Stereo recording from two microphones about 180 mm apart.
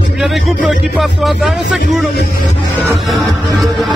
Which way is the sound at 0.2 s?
Centre (ahead or behind).